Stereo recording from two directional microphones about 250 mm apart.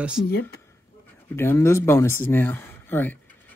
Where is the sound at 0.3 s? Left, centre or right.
Left.